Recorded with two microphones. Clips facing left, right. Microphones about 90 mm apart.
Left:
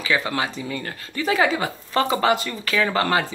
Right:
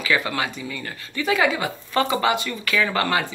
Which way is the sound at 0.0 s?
30° left (ahead or behind).